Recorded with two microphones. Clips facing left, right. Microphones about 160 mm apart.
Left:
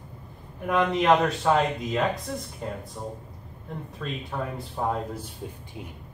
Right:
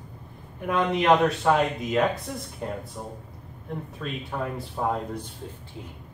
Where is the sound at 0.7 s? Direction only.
Centre (ahead or behind).